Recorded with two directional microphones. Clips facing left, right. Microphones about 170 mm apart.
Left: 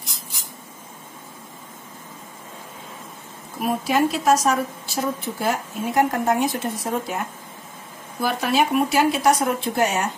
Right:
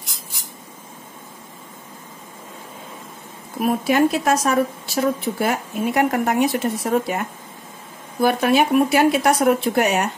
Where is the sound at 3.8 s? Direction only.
60° right (ahead or behind).